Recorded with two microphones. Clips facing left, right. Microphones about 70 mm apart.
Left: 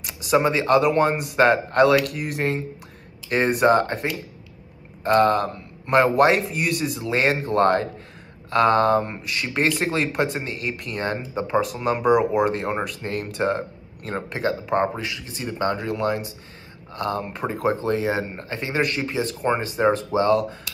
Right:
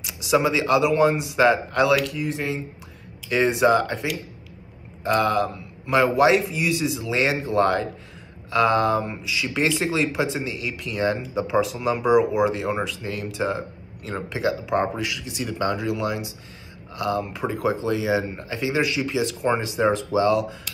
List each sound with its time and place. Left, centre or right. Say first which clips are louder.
0.0 s speech: left 1 dB; left
3.3 s speech: even; left